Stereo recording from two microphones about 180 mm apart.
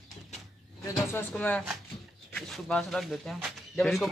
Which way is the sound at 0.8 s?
15° left (ahead or behind).